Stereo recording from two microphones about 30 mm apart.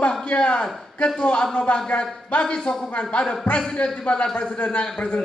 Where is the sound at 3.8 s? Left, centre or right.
Left.